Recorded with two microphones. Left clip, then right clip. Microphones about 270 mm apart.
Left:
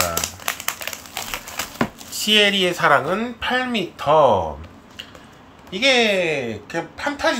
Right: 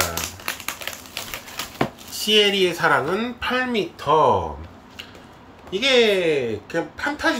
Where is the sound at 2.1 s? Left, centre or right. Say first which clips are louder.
Left 2 dB; centre.